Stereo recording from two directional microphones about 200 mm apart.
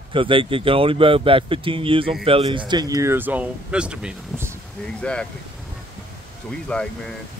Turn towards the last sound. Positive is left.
turn(degrees=5)  # may be behind; listen again after turning